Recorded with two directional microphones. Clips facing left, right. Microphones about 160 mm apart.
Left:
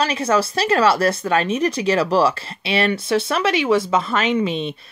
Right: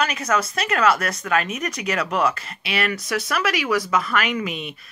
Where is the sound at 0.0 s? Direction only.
30° left (ahead or behind).